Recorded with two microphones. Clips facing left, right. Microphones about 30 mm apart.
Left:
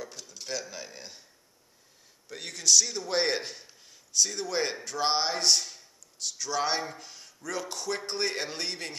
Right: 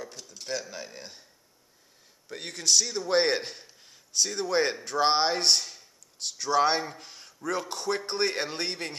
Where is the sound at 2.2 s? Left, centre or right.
Centre.